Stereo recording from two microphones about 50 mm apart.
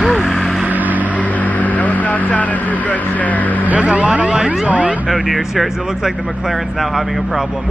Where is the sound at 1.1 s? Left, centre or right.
Left.